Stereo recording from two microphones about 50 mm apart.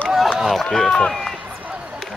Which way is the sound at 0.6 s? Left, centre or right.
Centre.